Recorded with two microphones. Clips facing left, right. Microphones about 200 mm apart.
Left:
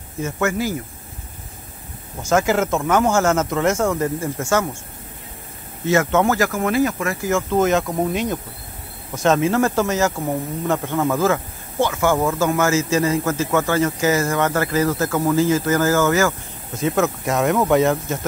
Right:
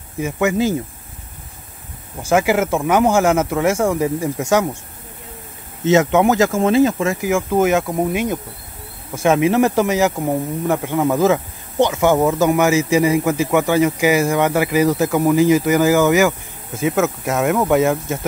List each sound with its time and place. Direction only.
0.2 s speech: 15° right (ahead or behind)
2.2 s speech: 10° right (ahead or behind)
5.9 s speech: 20° right (ahead or behind)
7.2 s speech: 10° right (ahead or behind)